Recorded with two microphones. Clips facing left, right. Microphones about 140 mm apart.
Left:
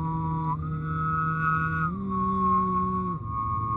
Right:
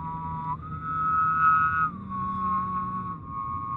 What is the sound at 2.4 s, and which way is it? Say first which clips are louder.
Music: left 4 dB; 55° left (ahead or behind).